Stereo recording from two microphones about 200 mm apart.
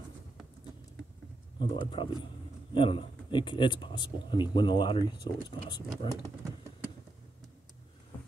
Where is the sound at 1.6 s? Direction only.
25° left (ahead or behind).